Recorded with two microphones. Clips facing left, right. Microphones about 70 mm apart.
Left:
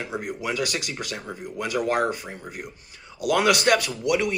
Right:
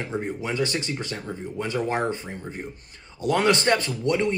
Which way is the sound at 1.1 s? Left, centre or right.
Centre.